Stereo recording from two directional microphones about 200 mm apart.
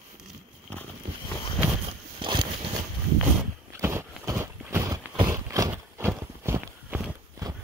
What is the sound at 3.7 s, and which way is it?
Clip-clop, 15° right (ahead or behind).